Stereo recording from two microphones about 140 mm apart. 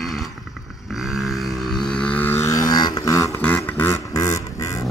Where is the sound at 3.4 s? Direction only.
10° left (ahead or behind).